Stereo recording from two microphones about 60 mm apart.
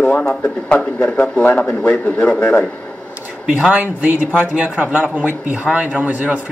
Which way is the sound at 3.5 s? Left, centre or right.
Right.